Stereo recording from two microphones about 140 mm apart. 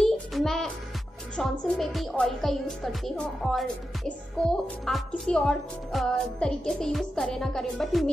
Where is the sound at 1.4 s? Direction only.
Centre (ahead or behind).